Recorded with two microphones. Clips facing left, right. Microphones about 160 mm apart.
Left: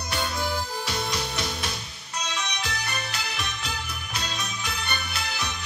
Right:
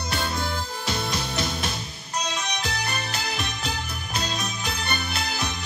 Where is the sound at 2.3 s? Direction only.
40° right (ahead or behind).